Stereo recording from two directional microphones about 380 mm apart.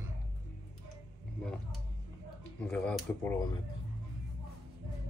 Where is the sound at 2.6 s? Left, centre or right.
Centre.